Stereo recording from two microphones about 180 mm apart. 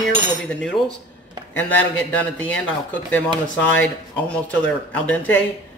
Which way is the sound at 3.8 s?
10° left (ahead or behind).